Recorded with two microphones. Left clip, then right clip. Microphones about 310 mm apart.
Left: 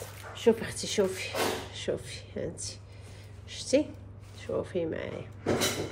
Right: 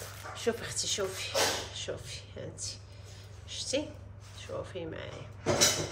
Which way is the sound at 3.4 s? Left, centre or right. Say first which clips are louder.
Left 6 dB; centre.